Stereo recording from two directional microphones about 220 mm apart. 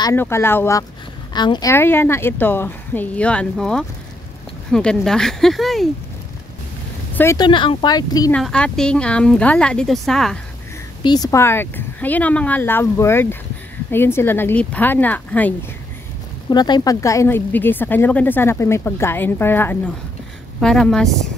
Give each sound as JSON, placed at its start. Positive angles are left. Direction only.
{"t": 0.0, "sound": "speech", "side_deg": 10}
{"t": 7.2, "sound": "speech", "side_deg": 15}
{"t": 8.4, "sound": "speech", "side_deg": 5}
{"t": 11.0, "sound": "speech", "side_deg": 20}
{"t": 16.4, "sound": "speech", "side_deg": 20}